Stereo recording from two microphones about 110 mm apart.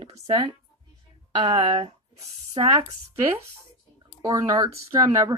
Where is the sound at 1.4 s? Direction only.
80° right.